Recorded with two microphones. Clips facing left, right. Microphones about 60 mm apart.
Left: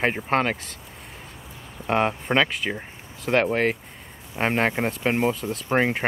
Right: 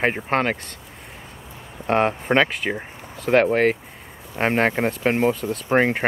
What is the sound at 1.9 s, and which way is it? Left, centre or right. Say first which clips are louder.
Speech: right 3 dB; centre.